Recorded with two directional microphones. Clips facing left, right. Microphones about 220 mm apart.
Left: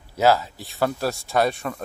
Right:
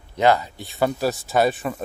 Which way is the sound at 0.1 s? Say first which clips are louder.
Even; 5° left (ahead or behind).